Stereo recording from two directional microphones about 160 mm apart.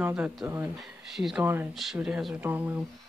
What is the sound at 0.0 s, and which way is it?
Speech, 10° right (ahead or behind).